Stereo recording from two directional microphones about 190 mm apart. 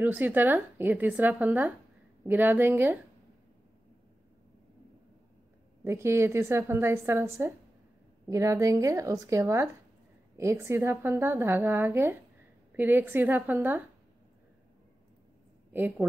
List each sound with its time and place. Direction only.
0.0 s a woman's voice: 10° right (ahead or behind)
5.9 s a woman's voice: 15° right (ahead or behind)
15.7 s a woman's voice: 10° right (ahead or behind)